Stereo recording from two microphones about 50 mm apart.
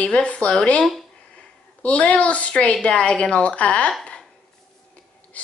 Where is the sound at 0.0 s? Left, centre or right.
Left.